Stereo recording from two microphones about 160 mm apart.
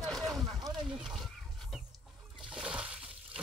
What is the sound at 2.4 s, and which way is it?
Water, 5° right (ahead or behind).